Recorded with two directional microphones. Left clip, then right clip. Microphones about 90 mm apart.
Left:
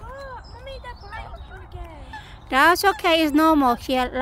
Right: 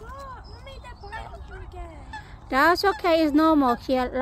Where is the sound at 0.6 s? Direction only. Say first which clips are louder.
Left 5 dB; 10° left (ahead or behind).